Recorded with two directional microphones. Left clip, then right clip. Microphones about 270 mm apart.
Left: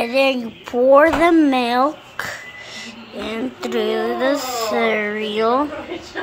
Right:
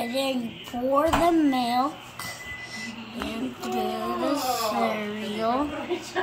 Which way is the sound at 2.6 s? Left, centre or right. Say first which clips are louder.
Left 3 dB; centre.